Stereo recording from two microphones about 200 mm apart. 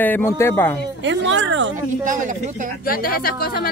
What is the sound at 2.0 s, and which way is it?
Speech, 40° right (ahead or behind).